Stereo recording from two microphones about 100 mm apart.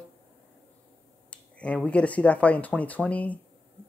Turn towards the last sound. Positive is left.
turn(degrees=15)  # may be behind; listen again after turning